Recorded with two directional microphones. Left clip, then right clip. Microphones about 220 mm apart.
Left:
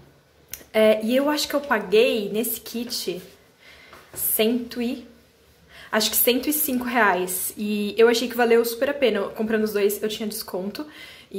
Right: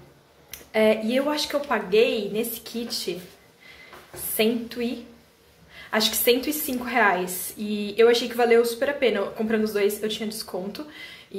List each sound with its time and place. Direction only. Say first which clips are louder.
0.5 s a woman's voice: left 3 dB; 15° left (ahead or behind)
4.4 s a woman's voice: left 1 dB; 15° left (ahead or behind)